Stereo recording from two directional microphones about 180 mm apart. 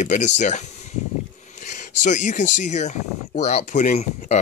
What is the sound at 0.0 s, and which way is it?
Speech, 40° left (ahead or behind).